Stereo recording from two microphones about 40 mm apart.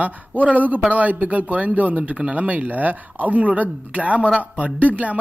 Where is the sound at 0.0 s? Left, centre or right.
Right.